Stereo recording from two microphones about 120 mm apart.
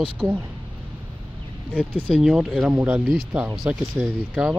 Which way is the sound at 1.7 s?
10° right (ahead or behind).